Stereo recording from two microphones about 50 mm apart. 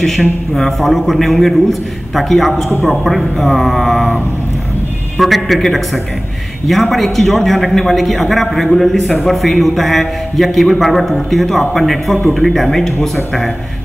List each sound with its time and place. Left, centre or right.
0.0 s a man's voice: centre
5.1 s a man's voice: centre